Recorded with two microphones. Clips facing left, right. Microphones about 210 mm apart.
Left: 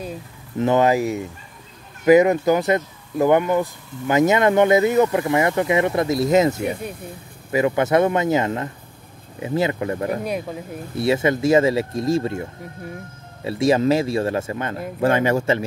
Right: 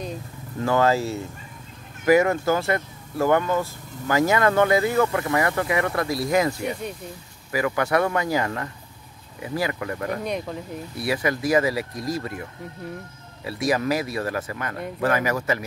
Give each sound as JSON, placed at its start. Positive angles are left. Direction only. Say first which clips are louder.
{"t": 0.6, "sound": "speech", "louder": "left 4 dB", "side_deg": 20}
{"t": 6.7, "sound": "speech", "louder": "left 2 dB", "side_deg": 5}
{"t": 7.5, "sound": "speech", "louder": "left 5 dB", "side_deg": 25}
{"t": 10.2, "sound": "speech", "louder": "left 2 dB", "side_deg": 5}
{"t": 11.0, "sound": "speech", "louder": "left 6 dB", "side_deg": 25}